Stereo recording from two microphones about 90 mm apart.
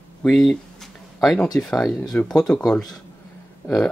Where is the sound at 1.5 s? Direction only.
10° left (ahead or behind).